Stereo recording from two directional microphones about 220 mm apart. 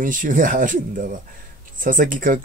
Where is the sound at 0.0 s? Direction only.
35° right (ahead or behind).